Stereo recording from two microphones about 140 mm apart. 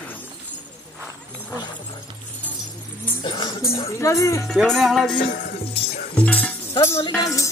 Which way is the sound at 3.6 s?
20° left (ahead or behind).